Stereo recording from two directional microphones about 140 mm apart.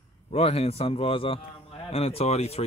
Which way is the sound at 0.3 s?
45° left (ahead or behind).